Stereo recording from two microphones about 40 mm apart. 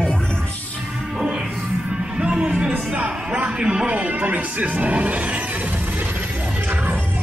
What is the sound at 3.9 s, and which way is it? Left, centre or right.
Speech, right.